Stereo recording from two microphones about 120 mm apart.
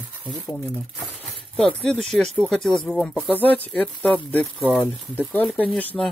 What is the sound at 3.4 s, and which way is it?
Speech, 15° left (ahead or behind).